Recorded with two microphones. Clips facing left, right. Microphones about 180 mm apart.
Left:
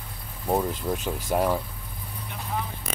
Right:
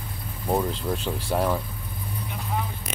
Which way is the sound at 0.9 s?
15° left (ahead or behind).